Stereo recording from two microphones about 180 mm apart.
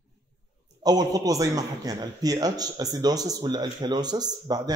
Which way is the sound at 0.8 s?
20° right (ahead or behind).